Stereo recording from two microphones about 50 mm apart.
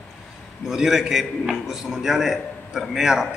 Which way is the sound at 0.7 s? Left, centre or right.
Centre.